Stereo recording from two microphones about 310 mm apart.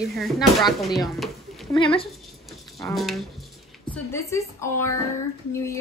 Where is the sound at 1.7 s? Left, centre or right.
Centre.